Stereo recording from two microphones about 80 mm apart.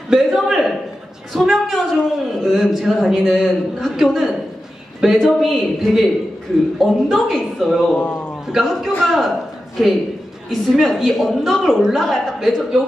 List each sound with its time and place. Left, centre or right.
0.1 s speech: centre
7.9 s a man's voice: left
8.5 s speech: centre
10.5 s speech: centre